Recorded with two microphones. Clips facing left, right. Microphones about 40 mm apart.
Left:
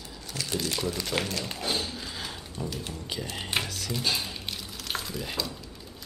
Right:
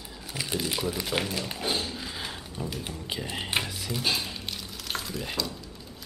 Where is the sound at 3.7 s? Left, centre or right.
Centre.